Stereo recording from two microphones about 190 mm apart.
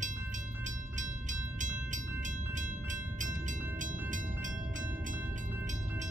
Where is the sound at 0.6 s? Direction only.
40° right (ahead or behind).